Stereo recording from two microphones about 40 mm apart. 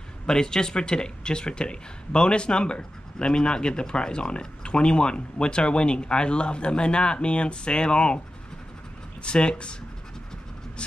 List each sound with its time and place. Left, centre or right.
0.3 s speech: centre
9.2 s speech: left